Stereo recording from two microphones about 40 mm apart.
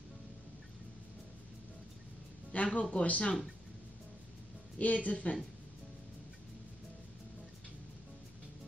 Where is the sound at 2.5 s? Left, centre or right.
Left.